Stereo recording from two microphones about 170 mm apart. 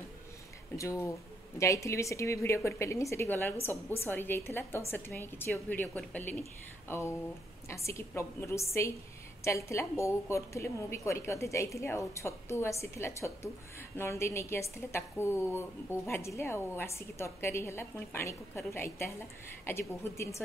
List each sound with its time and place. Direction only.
0.7 s a woman's voice: 15° left (ahead or behind)